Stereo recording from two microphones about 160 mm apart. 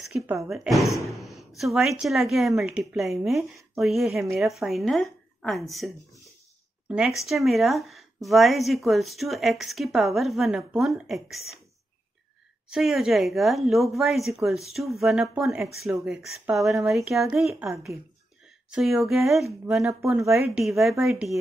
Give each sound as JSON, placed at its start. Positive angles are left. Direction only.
{"t": 0.5, "sound": "a woman's voice", "side_deg": 0}
{"t": 6.9, "sound": "a woman's voice", "side_deg": -5}
{"t": 12.6, "sound": "a woman's voice", "side_deg": -5}
{"t": 20.2, "sound": "speech", "side_deg": -20}
{"t": 20.5, "sound": "a woman's voice", "side_deg": 0}